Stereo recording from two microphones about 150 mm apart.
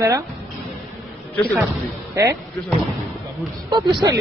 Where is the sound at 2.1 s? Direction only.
20° right (ahead or behind).